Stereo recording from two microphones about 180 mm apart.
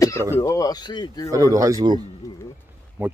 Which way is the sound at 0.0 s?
15° left (ahead or behind).